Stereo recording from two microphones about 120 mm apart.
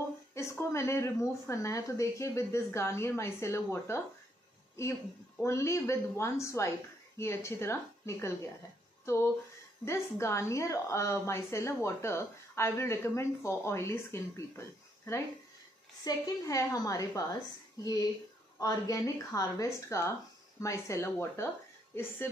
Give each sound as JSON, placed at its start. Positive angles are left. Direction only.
{"t": 0.3, "sound": "a woman's voice", "side_deg": 25}
{"t": 5.4, "sound": "a woman's voice", "side_deg": 25}